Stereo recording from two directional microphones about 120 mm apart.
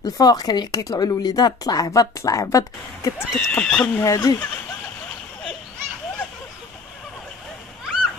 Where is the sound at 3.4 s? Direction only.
10° left (ahead or behind).